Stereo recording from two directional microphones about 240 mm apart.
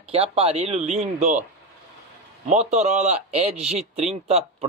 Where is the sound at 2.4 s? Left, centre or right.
Right.